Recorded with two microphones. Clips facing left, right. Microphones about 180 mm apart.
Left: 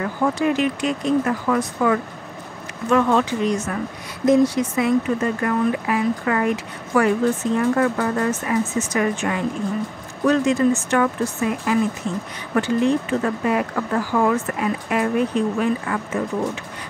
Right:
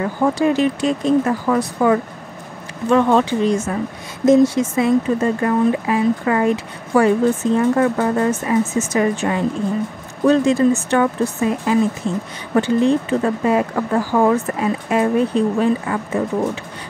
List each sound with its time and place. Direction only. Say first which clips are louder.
0.0 s speech: right 3 dB; 30° right (ahead or behind)